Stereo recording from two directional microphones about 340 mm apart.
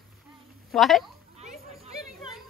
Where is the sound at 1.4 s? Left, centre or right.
Centre.